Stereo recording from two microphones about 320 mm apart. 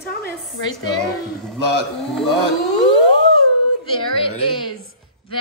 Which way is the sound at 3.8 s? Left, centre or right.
Centre.